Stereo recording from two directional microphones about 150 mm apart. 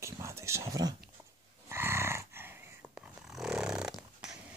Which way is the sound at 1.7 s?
15° right (ahead or behind).